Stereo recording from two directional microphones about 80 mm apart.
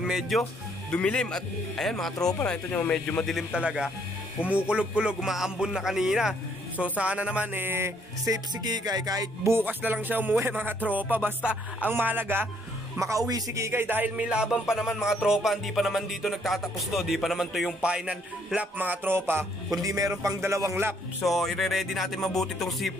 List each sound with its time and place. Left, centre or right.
0.0 s speech: centre
0.4 s speech: centre
3.5 s speech: centre; by 7.9 s right
8.5 s music: right
9.5 s a man's voice: right
13.3 s music: right; by 17.7 s centre
17.8 s a man's voice: centre; by 19.4 s right
19.8 s music: right
20.2 s speech: right
21.2 s music: centre